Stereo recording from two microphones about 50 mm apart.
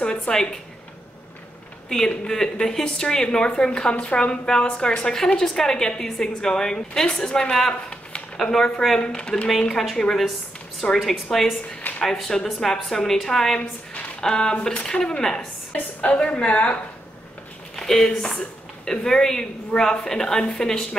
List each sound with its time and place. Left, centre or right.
0.0 s a woman's voice: centre
1.9 s a woman's voice: centre
13.6 s a sound: left
14.2 s speech: centre
17.7 s a woman's voice: centre